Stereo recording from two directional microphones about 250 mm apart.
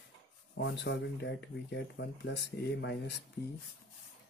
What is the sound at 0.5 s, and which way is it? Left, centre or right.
Speech, left.